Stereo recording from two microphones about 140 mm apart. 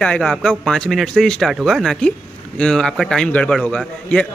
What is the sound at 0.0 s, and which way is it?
Speech, 5° left (ahead or behind).